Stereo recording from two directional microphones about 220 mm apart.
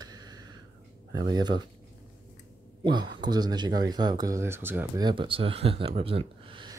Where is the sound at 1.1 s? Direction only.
20° right (ahead or behind).